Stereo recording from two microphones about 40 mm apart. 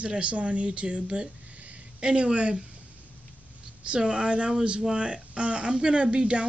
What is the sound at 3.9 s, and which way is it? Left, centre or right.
Speech, right.